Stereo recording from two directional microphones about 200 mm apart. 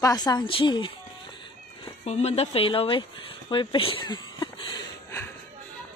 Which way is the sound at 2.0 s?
30° left (ahead or behind).